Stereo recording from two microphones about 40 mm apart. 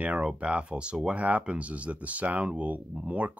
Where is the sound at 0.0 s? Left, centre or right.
Right.